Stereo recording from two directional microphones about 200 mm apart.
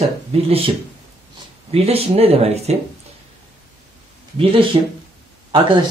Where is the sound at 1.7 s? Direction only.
30° right (ahead or behind).